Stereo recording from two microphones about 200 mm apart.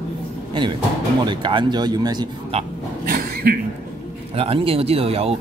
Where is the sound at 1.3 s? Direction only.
25° right (ahead or behind).